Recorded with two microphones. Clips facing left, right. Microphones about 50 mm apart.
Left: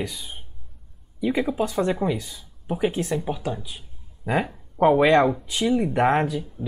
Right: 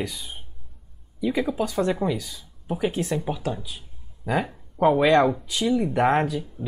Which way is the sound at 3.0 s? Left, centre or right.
Centre.